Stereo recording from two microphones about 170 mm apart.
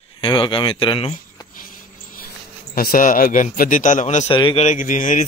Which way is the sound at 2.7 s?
60° left (ahead or behind).